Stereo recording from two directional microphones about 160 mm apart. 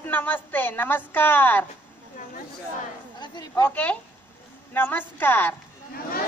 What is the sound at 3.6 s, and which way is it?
Speech, 10° left (ahead or behind).